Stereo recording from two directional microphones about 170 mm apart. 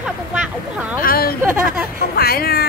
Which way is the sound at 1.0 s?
60° left (ahead or behind).